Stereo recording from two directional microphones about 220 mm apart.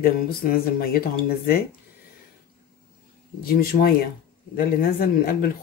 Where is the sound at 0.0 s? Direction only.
40° left (ahead or behind).